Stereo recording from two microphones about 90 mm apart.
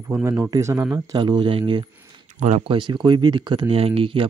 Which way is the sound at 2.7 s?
60° right (ahead or behind).